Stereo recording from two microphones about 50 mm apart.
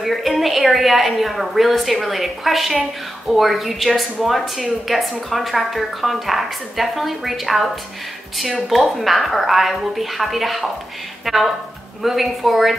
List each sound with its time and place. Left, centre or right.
0.0 s a woman's voice: centre